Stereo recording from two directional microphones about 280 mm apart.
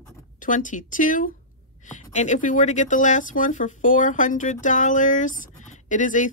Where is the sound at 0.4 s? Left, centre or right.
Left.